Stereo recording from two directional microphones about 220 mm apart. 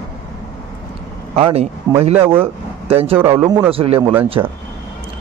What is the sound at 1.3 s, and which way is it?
Speech, 30° right (ahead or behind).